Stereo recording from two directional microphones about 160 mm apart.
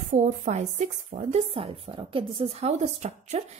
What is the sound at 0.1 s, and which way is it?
A woman's voice, 50° right (ahead or behind).